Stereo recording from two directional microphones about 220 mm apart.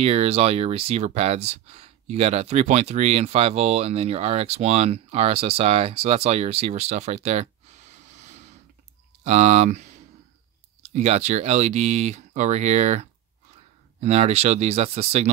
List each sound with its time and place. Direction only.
0.0 s speech: 30° right (ahead or behind)
10.9 s speech: 30° right (ahead or behind)
14.0 s speech: 30° right (ahead or behind)